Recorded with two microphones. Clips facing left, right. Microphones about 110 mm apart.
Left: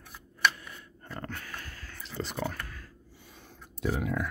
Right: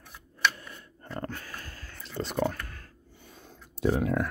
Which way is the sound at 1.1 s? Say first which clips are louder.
Right 3 dB; 35° right (ahead or behind).